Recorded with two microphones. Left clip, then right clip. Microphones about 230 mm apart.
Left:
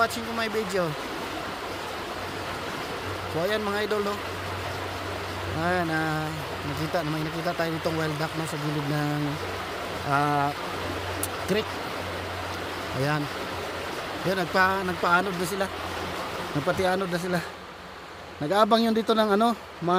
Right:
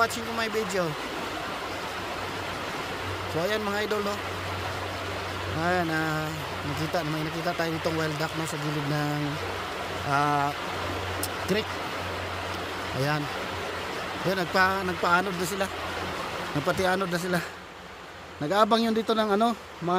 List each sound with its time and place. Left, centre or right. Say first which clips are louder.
0.0 s speech: left 1 dB; centre
3.3 s speech: left 1 dB; centre
5.6 s speech: even; centre
7.4 s speech: left 1 dB; centre
10.0 s speech: left 1 dB; centre
14.3 s speech: left 1 dB; centre
18.5 s speech: left 1 dB; centre